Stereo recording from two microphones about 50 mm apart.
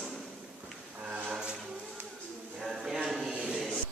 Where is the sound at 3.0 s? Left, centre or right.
Centre.